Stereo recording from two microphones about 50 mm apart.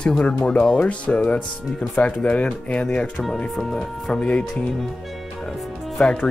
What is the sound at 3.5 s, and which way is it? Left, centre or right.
Speech, centre.